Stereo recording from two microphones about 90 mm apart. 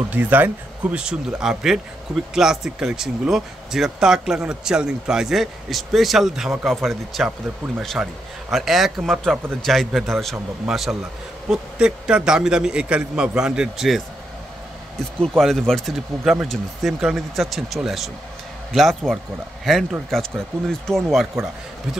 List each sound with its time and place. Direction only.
0.1 s speech: 20° right (ahead or behind); by 10.3 s centre (ahead or behind)
10.3 s a man's voice: 15° right (ahead or behind)
15.3 s speech: 5° left (ahead or behind)